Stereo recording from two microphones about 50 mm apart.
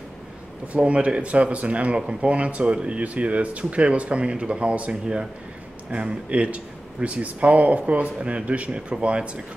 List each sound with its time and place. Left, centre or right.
0.7 s speech: right